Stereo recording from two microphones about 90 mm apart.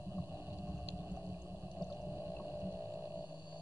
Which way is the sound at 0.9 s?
15° right (ahead or behind).